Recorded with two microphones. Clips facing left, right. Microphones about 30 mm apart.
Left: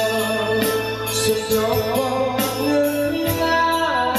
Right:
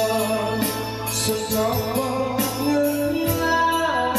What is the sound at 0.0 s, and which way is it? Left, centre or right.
Music, centre.